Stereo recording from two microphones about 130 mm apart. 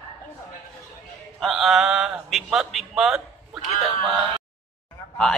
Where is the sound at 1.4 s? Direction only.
Centre (ahead or behind).